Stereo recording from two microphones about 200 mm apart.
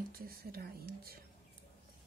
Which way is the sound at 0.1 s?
50° right (ahead or behind).